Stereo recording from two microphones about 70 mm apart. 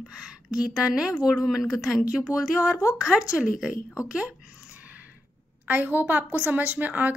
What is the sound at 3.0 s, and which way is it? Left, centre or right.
Speech, centre.